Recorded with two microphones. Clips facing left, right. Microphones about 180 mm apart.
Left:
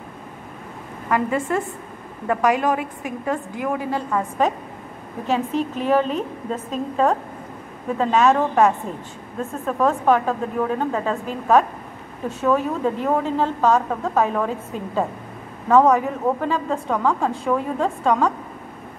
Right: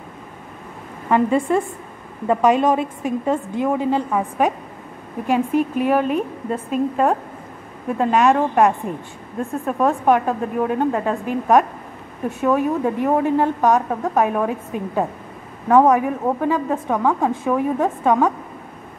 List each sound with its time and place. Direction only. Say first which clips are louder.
1.1 s a woman's voice: right 4 dB; 20° right (ahead or behind)